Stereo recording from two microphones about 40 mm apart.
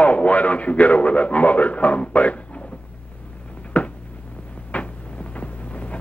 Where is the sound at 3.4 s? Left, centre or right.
Left.